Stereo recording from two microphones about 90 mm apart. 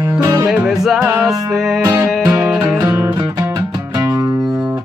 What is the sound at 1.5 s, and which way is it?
Speech, 5° right (ahead or behind).